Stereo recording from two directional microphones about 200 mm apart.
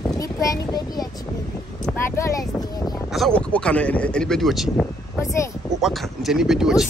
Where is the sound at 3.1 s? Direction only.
Centre (ahead or behind).